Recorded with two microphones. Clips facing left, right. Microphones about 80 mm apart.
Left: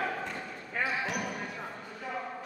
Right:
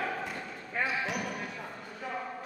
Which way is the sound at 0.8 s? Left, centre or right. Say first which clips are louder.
Even; centre.